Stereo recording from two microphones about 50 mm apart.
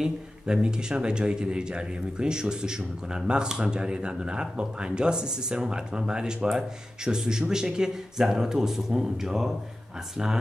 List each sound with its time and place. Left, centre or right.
0.0 s speech: centre